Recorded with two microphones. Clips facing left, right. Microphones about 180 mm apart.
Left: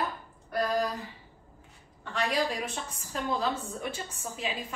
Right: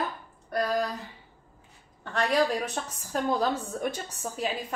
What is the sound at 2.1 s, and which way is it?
A woman's voice, 40° right (ahead or behind).